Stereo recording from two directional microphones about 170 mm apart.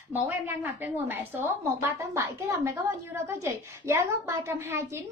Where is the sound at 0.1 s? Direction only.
10° right (ahead or behind).